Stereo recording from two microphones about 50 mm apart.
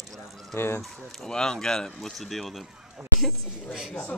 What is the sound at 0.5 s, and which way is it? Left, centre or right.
Speech, left.